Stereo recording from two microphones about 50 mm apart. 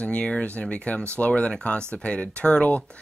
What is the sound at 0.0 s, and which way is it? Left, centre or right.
Speech, left.